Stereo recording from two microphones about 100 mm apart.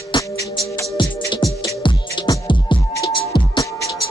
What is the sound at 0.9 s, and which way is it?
Music, 55° left (ahead or behind).